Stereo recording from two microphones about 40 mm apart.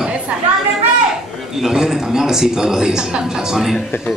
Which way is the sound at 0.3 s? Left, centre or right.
Right.